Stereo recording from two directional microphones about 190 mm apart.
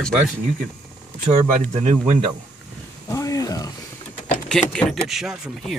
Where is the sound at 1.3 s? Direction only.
35° right (ahead or behind).